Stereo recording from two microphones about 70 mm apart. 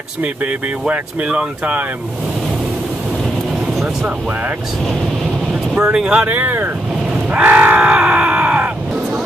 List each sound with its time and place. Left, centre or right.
0.2 s speech: right
5.8 s speech: centre
7.2 s a sound: right